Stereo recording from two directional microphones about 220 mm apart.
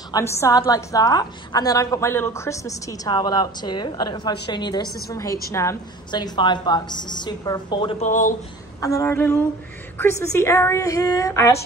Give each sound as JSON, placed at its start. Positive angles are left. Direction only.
{"t": 0.1, "sound": "a woman's voice", "side_deg": 15}
{"t": 8.1, "sound": "speech", "side_deg": 35}
{"t": 8.8, "sound": "a woman's voice", "side_deg": 10}